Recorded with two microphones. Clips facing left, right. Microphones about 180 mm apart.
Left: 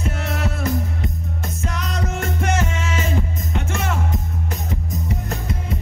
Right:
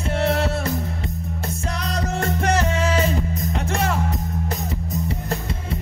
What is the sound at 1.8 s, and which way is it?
Music, 35° right (ahead or behind).